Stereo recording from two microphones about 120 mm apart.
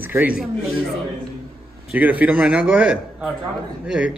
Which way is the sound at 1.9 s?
15° right (ahead or behind).